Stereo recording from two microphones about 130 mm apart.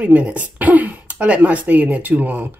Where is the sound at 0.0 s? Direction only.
10° right (ahead or behind).